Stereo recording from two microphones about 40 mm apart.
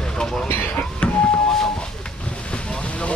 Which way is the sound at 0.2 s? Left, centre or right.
Centre.